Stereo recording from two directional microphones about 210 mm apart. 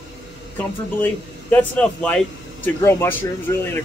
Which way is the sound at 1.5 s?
5° left (ahead or behind).